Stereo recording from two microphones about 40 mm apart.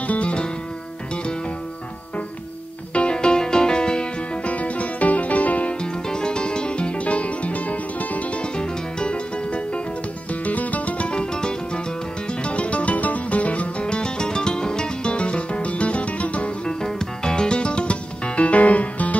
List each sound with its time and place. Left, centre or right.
0.0 s music: left
2.9 s music: left
4.5 s music: left
5.8 s music: left
8.4 s music: left
10.4 s music: left
11.1 s music: left
16.6 s music: centre; by 19.1 s left